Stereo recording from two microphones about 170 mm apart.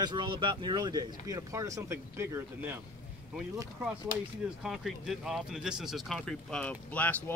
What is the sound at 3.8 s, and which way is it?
Speech, 5° right (ahead or behind).